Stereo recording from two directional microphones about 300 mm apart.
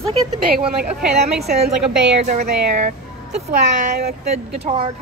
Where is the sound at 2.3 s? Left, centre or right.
Right.